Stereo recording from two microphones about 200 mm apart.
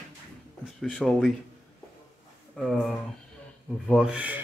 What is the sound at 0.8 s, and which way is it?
Speech, centre (ahead or behind).